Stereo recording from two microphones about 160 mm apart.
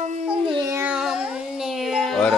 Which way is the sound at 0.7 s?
5° right (ahead or behind).